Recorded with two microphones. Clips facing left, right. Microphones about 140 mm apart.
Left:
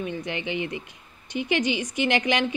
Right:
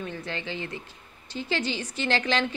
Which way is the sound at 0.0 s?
15° left (ahead or behind).